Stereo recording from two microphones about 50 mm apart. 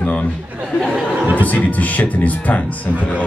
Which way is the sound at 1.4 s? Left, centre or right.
Left.